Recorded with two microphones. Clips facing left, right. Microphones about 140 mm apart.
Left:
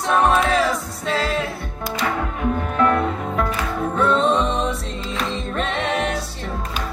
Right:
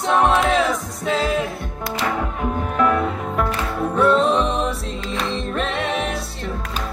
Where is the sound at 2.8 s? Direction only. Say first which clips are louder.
Even; 5° right (ahead or behind).